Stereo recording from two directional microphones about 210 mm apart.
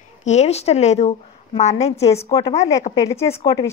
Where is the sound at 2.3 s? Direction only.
15° left (ahead or behind).